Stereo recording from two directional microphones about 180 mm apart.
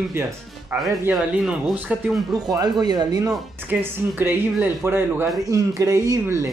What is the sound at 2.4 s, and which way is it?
Speech, 20° right (ahead or behind).